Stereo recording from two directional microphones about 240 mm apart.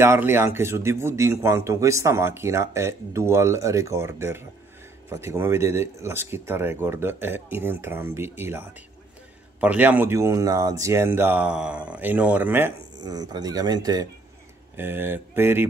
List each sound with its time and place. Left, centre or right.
0.0 s speech: centre